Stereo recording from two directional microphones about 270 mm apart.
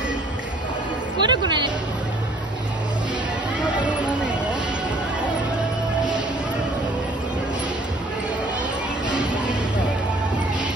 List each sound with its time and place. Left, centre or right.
1.2 s speech: centre